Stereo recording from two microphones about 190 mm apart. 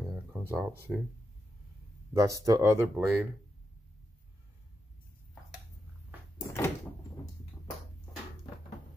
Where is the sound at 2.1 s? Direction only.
15° right (ahead or behind).